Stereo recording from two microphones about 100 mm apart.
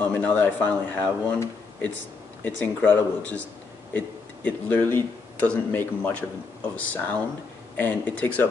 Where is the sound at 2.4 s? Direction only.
15° left (ahead or behind).